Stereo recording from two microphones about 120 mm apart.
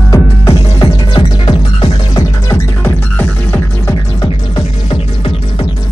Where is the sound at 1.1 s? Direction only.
40° left (ahead or behind).